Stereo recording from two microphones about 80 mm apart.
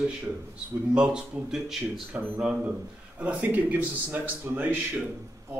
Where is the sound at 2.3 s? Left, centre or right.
Centre.